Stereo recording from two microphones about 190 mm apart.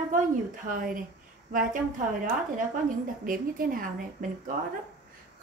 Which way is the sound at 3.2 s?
45° right (ahead or behind).